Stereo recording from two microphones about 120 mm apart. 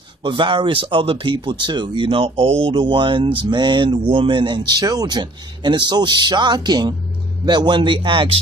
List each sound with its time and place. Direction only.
0.2 s speech: 40° right (ahead or behind)